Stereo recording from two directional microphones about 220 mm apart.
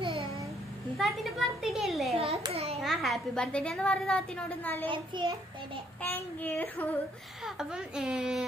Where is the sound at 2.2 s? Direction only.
25° right (ahead or behind).